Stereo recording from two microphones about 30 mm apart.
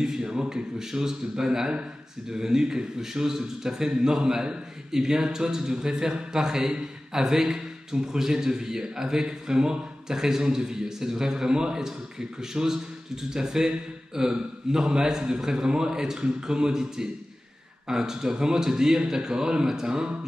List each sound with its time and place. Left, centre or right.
0.0 s a man's voice: right